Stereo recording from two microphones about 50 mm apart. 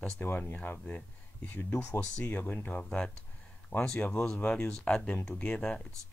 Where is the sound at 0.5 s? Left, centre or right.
Left.